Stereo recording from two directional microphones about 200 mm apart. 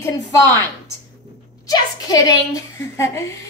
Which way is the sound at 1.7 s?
20° left (ahead or behind).